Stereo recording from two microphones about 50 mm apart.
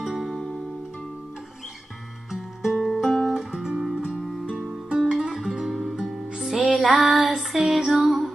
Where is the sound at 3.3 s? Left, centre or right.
Centre.